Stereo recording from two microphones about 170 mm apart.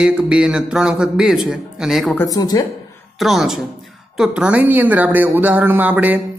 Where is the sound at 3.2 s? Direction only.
Centre (ahead or behind).